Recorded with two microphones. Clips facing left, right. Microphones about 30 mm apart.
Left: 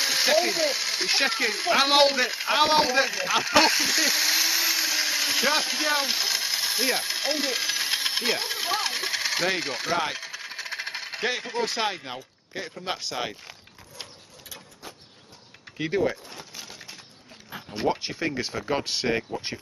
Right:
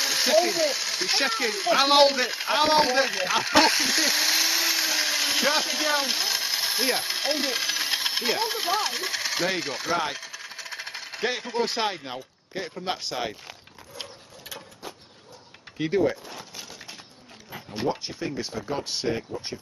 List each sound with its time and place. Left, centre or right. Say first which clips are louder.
0.0 s speech: right 1 dB; centre
11.5 s speech: right 1 dB; centre
15.8 s a sound: right 2 dB; centre
18.0 s speech: left 3 dB; left